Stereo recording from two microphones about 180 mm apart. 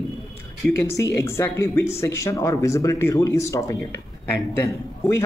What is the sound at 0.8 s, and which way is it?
Speech, 15° left (ahead or behind).